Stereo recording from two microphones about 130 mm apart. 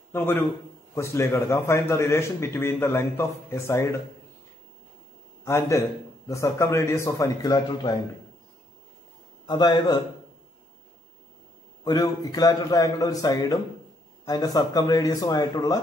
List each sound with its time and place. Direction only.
0.1 s a man's voice: 15° left (ahead or behind)
5.4 s a man's voice: 20° left (ahead or behind)
9.5 s a man's voice: 30° left (ahead or behind)
11.8 s a man's voice: 30° left (ahead or behind)